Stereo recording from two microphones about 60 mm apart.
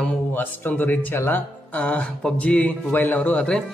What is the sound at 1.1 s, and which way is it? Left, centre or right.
Speech, left.